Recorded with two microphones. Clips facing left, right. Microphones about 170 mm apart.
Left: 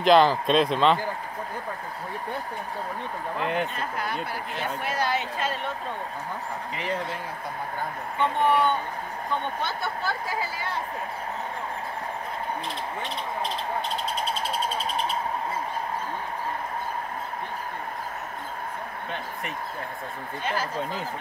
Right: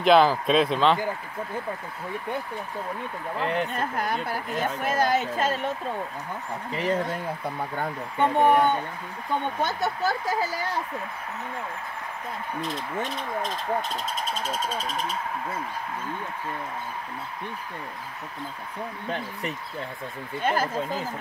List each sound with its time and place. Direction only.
0.0 s speech: 5° right (ahead or behind)
3.3 s speech: centre (ahead or behind)
3.7 s a woman's voice: 45° right (ahead or behind)
8.2 s a woman's voice: 50° right (ahead or behind)
12.6 s a woman's voice: 45° right (ahead or behind)
20.4 s a woman's voice: 50° right (ahead or behind)